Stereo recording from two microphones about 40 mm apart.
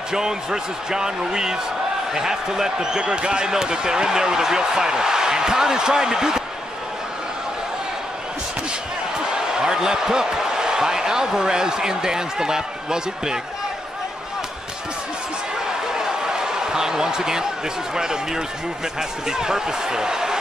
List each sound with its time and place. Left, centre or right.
0.1 s speech: centre
9.2 s speech: centre
15.9 s a sound: centre
17.9 s speech: centre